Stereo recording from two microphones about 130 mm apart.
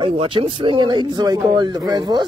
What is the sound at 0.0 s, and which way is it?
Speech, 45° right (ahead or behind).